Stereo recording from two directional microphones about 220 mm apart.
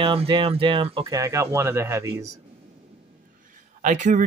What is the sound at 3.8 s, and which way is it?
Speech, 35° right (ahead or behind).